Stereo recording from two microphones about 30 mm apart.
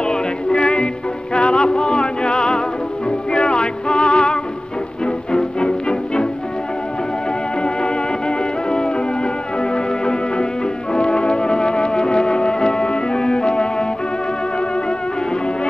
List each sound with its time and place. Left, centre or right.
0.0 s music: left
7.6 s music: left
10.9 s brass instrument: left